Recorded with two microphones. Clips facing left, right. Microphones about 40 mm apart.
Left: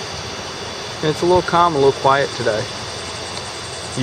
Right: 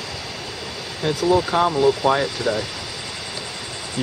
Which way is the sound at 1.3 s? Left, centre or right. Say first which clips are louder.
Left 4 dB; centre.